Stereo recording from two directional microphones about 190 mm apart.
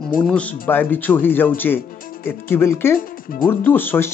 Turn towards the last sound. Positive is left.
turn(degrees=10)  # may be behind; listen again after turning